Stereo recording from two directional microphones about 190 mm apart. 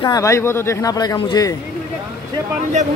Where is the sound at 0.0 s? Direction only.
15° left (ahead or behind).